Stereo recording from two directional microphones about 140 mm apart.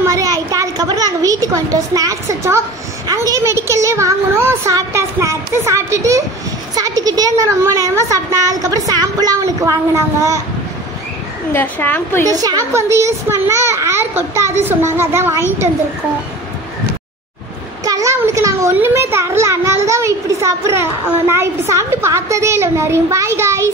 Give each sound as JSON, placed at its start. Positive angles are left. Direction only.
{"t": 0.0, "sound": "a woman's voice", "side_deg": -25}
{"t": 11.5, "sound": "a woman's voice", "side_deg": 15}
{"t": 12.3, "sound": "a child's voice", "side_deg": -25}
{"t": 17.8, "sound": "a child's voice", "side_deg": -25}